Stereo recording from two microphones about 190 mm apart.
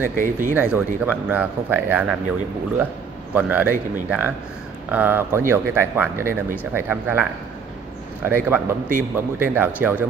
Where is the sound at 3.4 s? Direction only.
10° right (ahead or behind).